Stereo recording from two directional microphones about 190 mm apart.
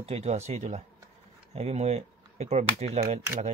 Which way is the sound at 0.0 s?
35° right (ahead or behind).